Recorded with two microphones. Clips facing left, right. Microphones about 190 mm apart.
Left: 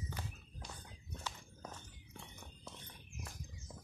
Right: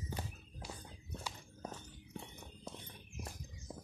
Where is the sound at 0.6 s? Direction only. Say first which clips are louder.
Right 4 dB; 10° right (ahead or behind).